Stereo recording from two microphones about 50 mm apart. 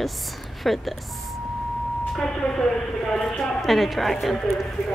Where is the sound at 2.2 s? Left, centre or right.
Centre.